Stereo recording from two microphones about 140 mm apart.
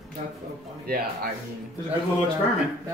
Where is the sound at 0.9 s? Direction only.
90° right.